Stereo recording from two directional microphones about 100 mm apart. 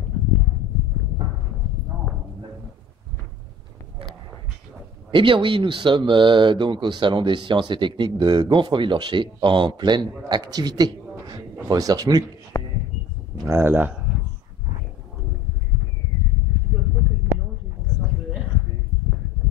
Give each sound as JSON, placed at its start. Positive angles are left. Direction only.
{"t": 5.1, "sound": "speech", "side_deg": -60}
{"t": 12.5, "sound": "a sound", "side_deg": 35}
{"t": 13.4, "sound": "speech", "side_deg": -25}